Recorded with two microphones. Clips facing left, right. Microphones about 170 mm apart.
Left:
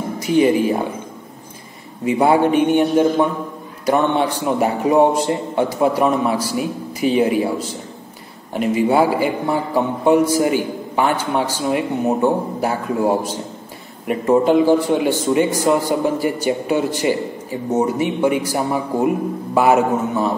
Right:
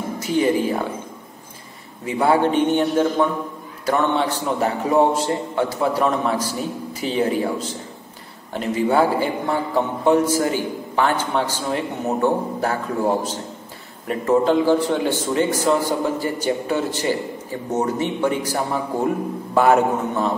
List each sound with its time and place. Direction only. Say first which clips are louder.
0.3 s a man's voice: left 4 dB; 15° left (ahead or behind)
2.0 s a man's voice: left 3 dB; 15° left (ahead or behind)